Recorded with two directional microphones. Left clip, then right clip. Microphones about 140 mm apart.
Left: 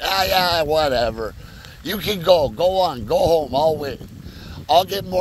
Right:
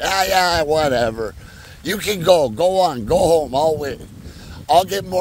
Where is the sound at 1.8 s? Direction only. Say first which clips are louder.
Right 2 dB; 85° right.